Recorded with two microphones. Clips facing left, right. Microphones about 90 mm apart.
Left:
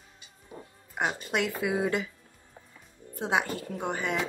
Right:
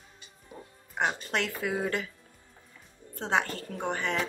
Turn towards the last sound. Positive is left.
turn(degrees=10)  # may be behind; listen again after turning